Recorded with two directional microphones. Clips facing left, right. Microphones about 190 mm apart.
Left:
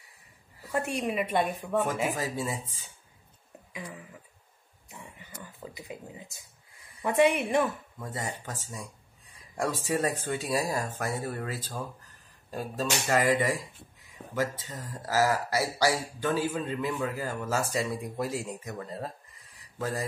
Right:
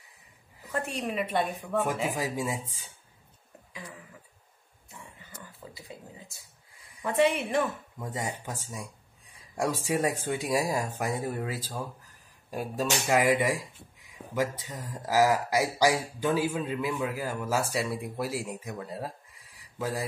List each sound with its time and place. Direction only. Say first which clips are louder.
0.7 s a woman's voice: left 2 dB; 10° left (ahead or behind)
2.1 s speech: right 1 dB; 15° right (ahead or behind)
5.8 s a woman's voice: left 4 dB; 20° left (ahead or behind)
8.0 s speech: right 2 dB; 15° right (ahead or behind)